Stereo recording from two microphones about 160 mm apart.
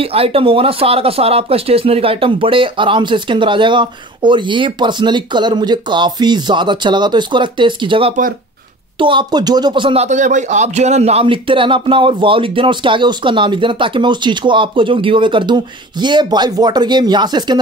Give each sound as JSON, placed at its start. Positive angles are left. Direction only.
{"t": 0.0, "sound": "speech", "side_deg": -35}
{"t": 10.0, "sound": "speech", "side_deg": -50}